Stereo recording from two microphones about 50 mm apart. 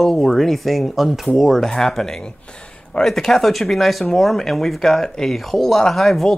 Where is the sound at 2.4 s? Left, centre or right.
Centre.